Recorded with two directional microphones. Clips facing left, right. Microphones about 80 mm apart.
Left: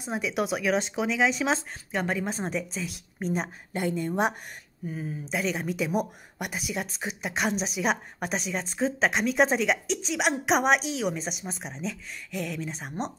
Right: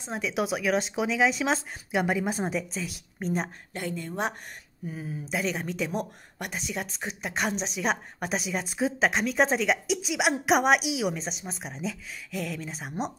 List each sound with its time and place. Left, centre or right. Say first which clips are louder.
0.0 s speech: left 1 dB; centre
3.7 s speech: left 6 dB; left
4.8 s speech: left 1 dB; centre